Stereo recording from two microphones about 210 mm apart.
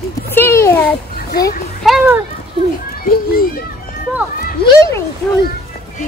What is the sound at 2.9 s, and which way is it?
Children playing, 45° left (ahead or behind).